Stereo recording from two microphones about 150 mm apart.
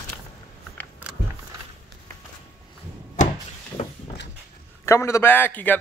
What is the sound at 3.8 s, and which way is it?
Vehicle, 45° left (ahead or behind).